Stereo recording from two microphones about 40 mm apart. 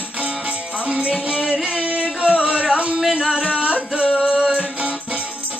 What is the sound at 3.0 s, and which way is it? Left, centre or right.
Music, centre.